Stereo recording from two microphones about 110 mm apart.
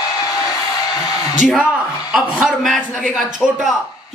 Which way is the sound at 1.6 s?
10° right (ahead or behind).